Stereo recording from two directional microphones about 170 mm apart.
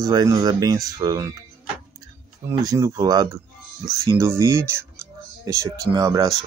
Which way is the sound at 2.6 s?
20° right (ahead or behind).